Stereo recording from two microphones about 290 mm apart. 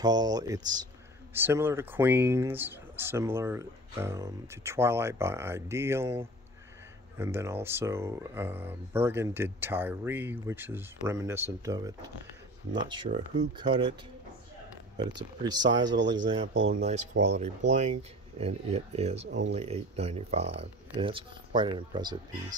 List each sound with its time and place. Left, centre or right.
0.0 s speech: centre
15.0 s speech: centre